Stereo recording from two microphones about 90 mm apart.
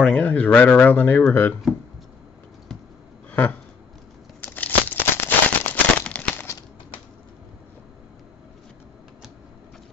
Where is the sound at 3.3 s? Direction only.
20° left (ahead or behind).